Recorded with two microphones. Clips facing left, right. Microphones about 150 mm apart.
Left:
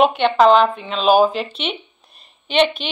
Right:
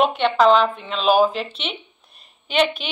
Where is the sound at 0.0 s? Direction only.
Centre (ahead or behind).